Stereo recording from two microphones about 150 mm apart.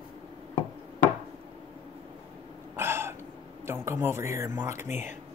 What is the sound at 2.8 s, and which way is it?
Throat clearing, 15° right (ahead or behind).